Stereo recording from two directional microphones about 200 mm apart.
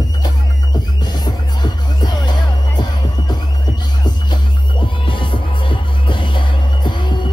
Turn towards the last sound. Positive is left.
turn(degrees=20)  # may be behind; listen again after turning